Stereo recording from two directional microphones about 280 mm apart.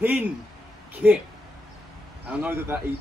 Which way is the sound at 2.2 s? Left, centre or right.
Centre.